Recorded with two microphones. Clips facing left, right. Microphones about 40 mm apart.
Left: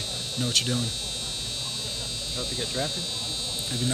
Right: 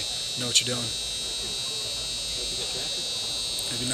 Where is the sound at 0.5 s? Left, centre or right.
Centre.